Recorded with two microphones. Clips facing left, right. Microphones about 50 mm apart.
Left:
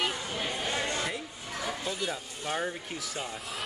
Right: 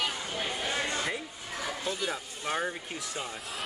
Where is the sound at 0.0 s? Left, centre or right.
Centre.